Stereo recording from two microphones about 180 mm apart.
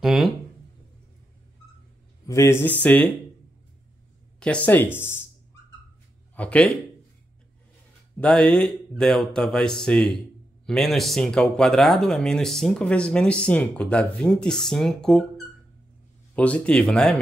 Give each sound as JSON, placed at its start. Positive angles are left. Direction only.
{"t": 0.0, "sound": "speech", "side_deg": 0}
{"t": 2.2, "sound": "speech", "side_deg": 15}
{"t": 4.4, "sound": "speech", "side_deg": 5}
{"t": 6.3, "sound": "speech", "side_deg": 5}
{"t": 8.2, "sound": "speech", "side_deg": 5}